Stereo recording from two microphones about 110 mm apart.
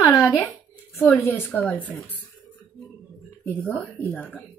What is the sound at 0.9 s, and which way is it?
Speech, 15° left (ahead or behind).